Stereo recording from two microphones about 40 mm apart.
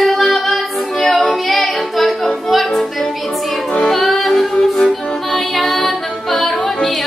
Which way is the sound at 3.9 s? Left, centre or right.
Centre.